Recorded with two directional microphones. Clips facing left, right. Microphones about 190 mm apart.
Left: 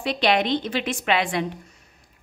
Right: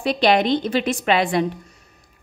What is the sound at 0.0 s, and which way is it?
A woman's voice, 40° right (ahead or behind).